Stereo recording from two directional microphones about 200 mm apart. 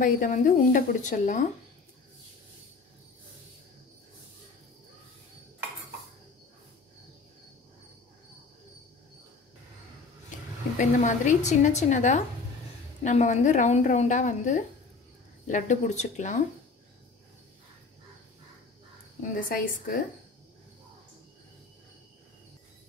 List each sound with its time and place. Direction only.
0.0 s speech: 40° left (ahead or behind)
10.8 s speech: 40° left (ahead or behind)
19.5 s a woman's voice: 45° left (ahead or behind)